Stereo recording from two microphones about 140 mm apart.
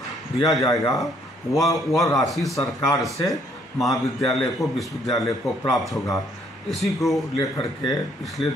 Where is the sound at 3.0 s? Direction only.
Centre (ahead or behind).